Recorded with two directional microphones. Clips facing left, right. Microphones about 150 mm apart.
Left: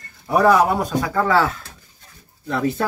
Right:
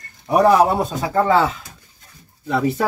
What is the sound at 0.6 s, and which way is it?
Speech, 25° right (ahead or behind).